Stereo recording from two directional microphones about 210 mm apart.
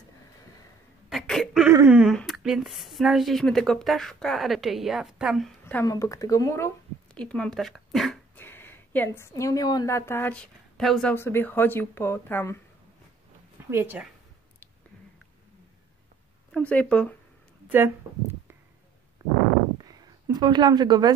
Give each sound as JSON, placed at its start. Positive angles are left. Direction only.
{"t": 1.1, "sound": "a sound", "side_deg": 0}
{"t": 1.7, "sound": "speech", "side_deg": -10}
{"t": 13.7, "sound": "speech", "side_deg": -10}
{"t": 16.5, "sound": "speech", "side_deg": 5}
{"t": 17.6, "sound": "speech", "side_deg": -10}
{"t": 19.8, "sound": "a sound", "side_deg": -20}